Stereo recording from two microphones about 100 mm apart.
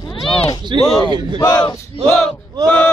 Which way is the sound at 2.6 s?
15° left (ahead or behind).